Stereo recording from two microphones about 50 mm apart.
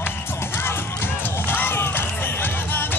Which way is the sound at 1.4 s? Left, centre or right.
Left.